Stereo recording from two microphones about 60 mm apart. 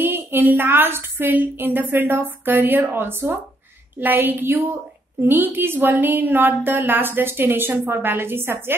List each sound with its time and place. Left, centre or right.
0.0 s a woman's voice: right